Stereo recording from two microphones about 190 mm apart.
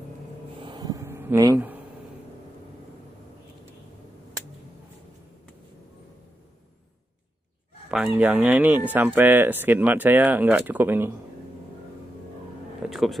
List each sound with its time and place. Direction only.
0.6 s a sound: 25° right (ahead or behind)
7.9 s speech: 5° right (ahead or behind)
12.9 s speech: centre (ahead or behind)